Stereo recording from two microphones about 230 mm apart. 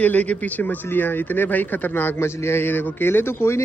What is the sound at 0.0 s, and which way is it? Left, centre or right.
Speech, centre.